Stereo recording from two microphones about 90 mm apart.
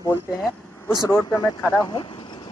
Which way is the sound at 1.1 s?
35° left (ahead or behind).